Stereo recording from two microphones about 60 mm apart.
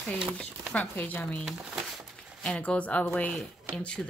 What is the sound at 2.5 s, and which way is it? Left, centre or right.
Speech, centre.